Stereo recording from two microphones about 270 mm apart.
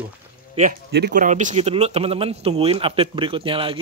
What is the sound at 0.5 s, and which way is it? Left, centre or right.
Speech, right.